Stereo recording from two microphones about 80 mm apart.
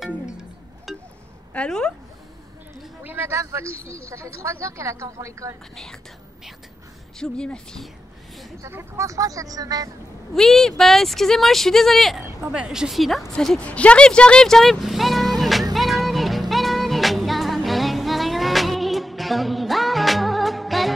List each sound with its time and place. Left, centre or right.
0.9 s a sound: centre
1.5 s a woman's voice: centre
3.0 s a sound: right
3.3 s speech: right
7.2 s speech: centre
8.6 s speech: right
10.3 s speech: centre
12.4 s speech: centre
13.3 s speech: centre
15.7 s music: centre